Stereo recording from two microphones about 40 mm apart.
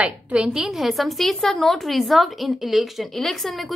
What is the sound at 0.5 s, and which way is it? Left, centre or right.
A woman's voice, centre.